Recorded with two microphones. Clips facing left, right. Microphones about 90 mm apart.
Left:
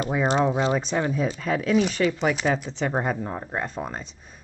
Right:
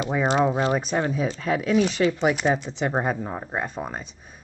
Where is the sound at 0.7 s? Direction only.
10° right (ahead or behind).